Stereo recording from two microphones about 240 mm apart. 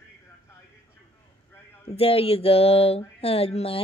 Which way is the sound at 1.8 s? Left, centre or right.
Left.